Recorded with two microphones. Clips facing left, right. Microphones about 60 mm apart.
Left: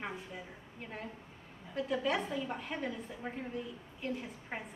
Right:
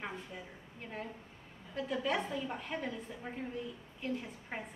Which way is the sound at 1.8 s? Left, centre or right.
Centre.